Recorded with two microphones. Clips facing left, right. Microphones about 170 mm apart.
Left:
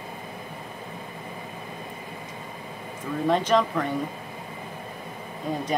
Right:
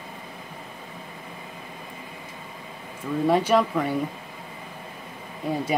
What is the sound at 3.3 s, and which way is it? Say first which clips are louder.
Speech: right 1 dB; 10° right (ahead or behind).